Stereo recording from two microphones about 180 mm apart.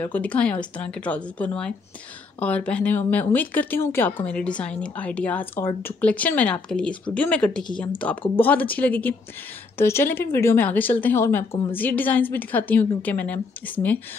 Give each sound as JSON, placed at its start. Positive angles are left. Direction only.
{"t": 0.0, "sound": "speech", "side_deg": 10}